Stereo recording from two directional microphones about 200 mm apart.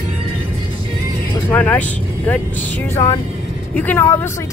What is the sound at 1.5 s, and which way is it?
Speech, 10° left (ahead or behind).